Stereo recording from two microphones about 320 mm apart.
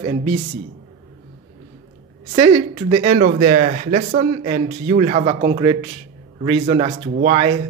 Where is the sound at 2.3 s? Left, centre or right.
Centre.